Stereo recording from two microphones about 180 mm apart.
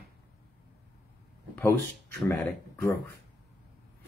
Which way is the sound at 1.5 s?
10° left (ahead or behind).